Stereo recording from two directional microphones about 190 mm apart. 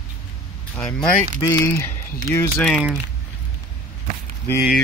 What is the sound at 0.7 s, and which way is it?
Speech, 15° left (ahead or behind).